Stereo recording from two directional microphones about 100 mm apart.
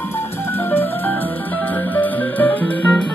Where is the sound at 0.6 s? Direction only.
20° left (ahead or behind).